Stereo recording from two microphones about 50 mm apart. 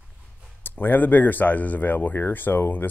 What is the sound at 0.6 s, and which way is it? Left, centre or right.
Speech, left.